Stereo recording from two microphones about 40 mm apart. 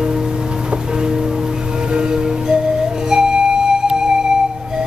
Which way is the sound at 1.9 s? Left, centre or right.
Centre.